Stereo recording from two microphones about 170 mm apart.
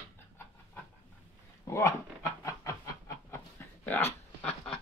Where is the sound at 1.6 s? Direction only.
20° left (ahead or behind).